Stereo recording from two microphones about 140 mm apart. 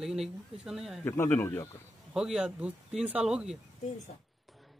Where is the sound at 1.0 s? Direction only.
15° left (ahead or behind).